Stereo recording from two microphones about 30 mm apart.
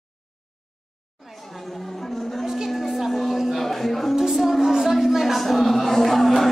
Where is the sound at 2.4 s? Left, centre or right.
Centre.